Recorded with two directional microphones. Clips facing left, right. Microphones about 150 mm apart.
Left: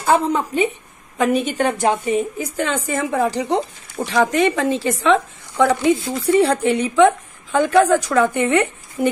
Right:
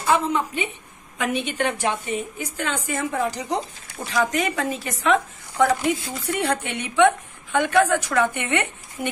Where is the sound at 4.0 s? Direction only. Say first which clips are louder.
Left 8 dB; 55° left (ahead or behind).